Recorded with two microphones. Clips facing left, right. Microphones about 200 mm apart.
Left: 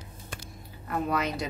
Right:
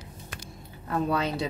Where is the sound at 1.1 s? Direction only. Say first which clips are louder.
Right 1 dB; 30° right (ahead or behind).